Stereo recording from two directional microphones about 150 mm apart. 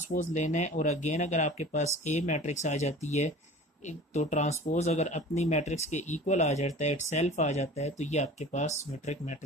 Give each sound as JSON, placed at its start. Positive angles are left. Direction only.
{"t": 0.1, "sound": "speech", "side_deg": 55}